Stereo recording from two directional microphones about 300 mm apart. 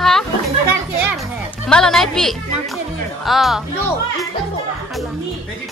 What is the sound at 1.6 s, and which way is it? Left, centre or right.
A woman's voice, centre.